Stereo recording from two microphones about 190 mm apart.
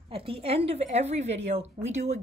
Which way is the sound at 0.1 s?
30° right (ahead or behind).